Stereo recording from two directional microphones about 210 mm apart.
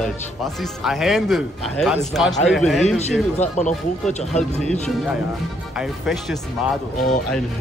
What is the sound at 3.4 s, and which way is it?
Speech, 35° left (ahead or behind).